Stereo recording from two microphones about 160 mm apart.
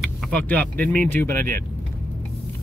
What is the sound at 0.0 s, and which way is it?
Speech, 5° left (ahead or behind).